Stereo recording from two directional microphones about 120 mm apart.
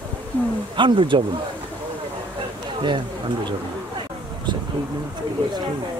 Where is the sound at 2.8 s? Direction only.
40° right (ahead or behind).